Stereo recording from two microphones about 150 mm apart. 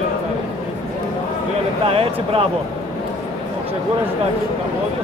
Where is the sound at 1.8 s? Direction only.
40° right (ahead or behind).